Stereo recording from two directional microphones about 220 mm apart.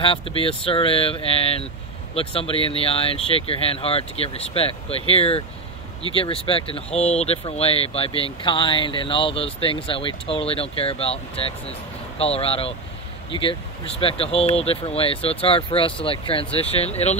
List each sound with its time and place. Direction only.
0.0 s speech: 25° left (ahead or behind)